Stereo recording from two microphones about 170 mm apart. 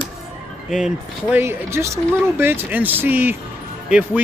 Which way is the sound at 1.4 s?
15° right (ahead or behind).